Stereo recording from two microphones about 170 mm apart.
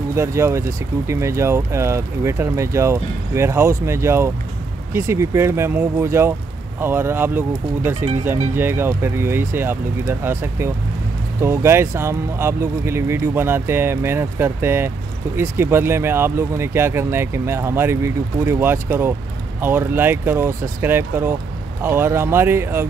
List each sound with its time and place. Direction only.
0.1 s speech: 15° right (ahead or behind)